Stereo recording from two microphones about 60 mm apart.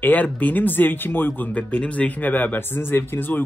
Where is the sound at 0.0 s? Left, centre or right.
Left.